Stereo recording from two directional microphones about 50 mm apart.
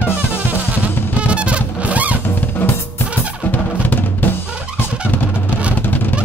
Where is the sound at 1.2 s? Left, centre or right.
Right.